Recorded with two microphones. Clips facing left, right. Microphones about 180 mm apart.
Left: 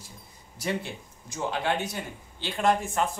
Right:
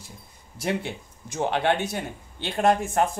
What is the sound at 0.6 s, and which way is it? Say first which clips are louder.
Speech: right 3 dB; 55° right (ahead or behind).